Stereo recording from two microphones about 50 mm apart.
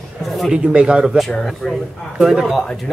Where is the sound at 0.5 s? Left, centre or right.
Centre.